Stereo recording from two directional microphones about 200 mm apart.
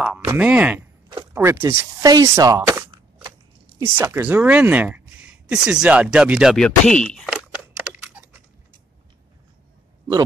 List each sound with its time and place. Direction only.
0.3 s speech: 5° right (ahead or behind)